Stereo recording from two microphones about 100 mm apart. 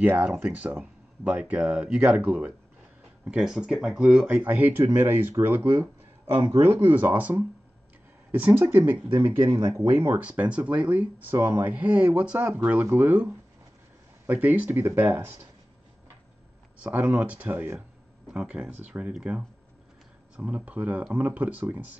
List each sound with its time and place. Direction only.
0.0 s speech: 15° right (ahead or behind)
16.7 s speech: 15° right (ahead or behind)
17.7 s a sound: 10° right (ahead or behind)
18.7 s speech: 15° right (ahead or behind)